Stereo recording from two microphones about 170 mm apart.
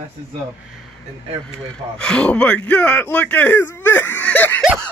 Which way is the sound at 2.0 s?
5° left (ahead or behind).